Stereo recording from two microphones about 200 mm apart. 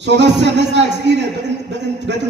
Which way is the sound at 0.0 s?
60° right (ahead or behind).